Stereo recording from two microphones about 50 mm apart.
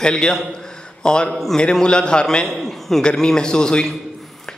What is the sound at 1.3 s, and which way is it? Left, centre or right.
Speech, centre.